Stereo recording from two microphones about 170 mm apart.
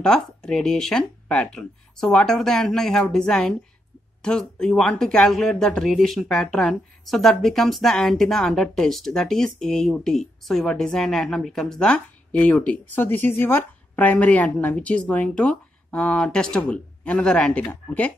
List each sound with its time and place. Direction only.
0.0 s speech: 5° left (ahead or behind)